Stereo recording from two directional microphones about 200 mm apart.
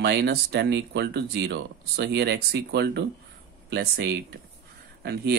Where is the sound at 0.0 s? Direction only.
55° right (ahead or behind).